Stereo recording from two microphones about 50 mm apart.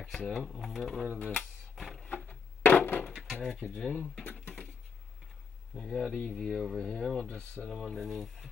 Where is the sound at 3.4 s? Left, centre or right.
Centre.